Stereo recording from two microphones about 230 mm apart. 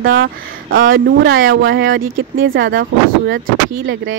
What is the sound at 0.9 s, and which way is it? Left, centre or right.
Speech, right.